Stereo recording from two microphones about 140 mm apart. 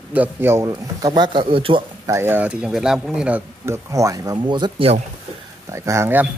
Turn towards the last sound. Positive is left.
turn(degrees=-15)  # may be behind; listen again after turning